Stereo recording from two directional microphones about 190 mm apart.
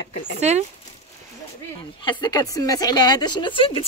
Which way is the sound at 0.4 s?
35° right (ahead or behind).